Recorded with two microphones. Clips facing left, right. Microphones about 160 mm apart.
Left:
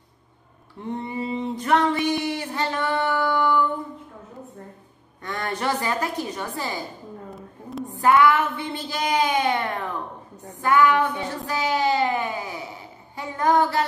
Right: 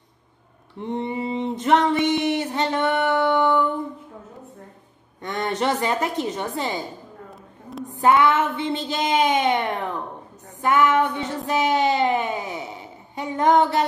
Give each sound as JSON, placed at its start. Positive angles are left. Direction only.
{"t": 0.8, "sound": "a sound", "side_deg": -20}
{"t": 5.2, "sound": "a woman's voice", "side_deg": -20}
{"t": 8.0, "sound": "child singing", "side_deg": -20}